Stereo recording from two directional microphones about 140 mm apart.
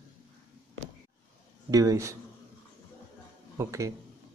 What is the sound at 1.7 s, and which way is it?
Speech, 25° right (ahead or behind).